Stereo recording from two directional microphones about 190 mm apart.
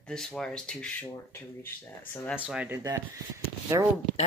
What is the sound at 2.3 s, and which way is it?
Speech, 5° right (ahead or behind).